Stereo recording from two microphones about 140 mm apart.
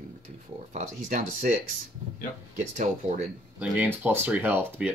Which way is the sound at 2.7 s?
55° right (ahead or behind).